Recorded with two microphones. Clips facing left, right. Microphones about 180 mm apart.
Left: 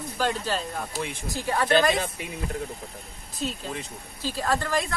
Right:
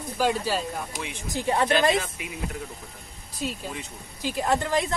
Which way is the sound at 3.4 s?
10° right (ahead or behind).